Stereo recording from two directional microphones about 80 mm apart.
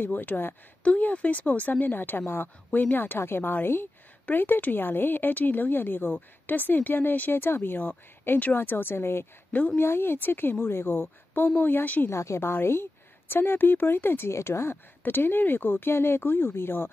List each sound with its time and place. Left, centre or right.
0.0 s a woman's voice: left
12.1 s a woman's voice: left